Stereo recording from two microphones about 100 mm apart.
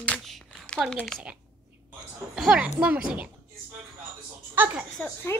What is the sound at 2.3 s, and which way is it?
Speech, 5° right (ahead or behind).